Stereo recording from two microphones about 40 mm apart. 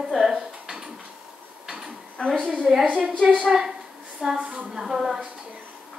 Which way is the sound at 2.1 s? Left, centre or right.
Left.